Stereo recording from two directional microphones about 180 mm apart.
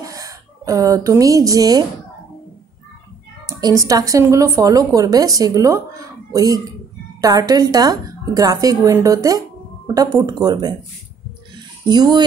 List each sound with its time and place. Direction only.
0.0 s a woman's voice: 20° right (ahead or behind)
3.4 s speech: 20° right (ahead or behind)
11.5 s a sound: 25° right (ahead or behind)